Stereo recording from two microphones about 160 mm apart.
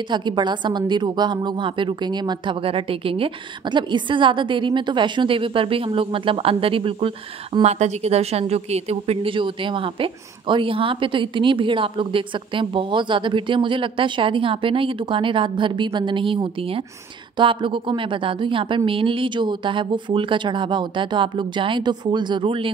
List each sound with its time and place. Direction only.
0.1 s a woman's voice: 30° right (ahead or behind)